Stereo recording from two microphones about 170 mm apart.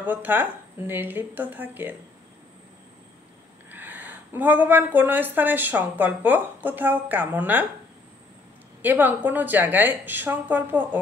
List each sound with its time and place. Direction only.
0.0 s speech: 10° right (ahead or behind)
3.7 s speech: 10° right (ahead or behind)
8.8 s speech: 10° right (ahead or behind)